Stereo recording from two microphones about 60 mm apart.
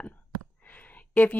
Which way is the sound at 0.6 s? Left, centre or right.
Left.